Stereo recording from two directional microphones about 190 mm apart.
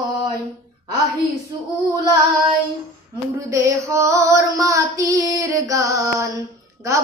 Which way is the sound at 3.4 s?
15° right (ahead or behind).